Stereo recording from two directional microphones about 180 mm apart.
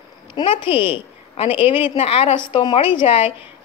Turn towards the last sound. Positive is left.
turn(degrees=30)  # may be behind; listen again after turning